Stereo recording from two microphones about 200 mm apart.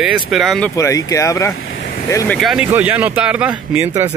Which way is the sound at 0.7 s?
15° left (ahead or behind).